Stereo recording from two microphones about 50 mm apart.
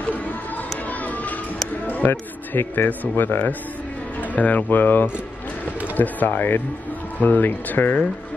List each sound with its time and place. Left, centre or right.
1.9 s music: left
2.7 s speech: left